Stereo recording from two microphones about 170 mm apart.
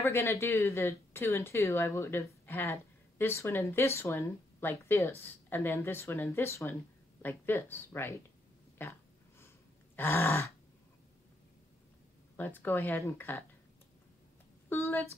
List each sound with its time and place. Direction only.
0.0 s speech: 15° left (ahead or behind)
9.9 s speech: 15° left (ahead or behind)
12.4 s speech: 10° left (ahead or behind)
14.7 s speech: 15° left (ahead or behind)